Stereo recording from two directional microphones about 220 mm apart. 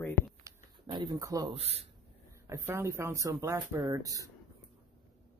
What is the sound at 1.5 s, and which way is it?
Speech, 30° right (ahead or behind).